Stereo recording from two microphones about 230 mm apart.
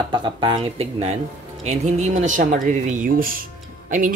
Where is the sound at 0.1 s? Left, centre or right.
Right.